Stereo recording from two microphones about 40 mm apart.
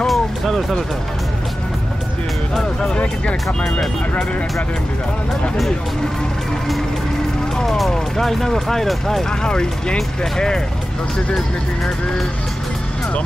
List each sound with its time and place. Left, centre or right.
0.0 s vehicle: centre
7.6 s speech: centre
9.4 s speech: left